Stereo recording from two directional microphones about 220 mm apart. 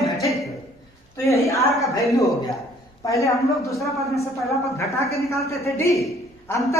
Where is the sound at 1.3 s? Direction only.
30° left (ahead or behind).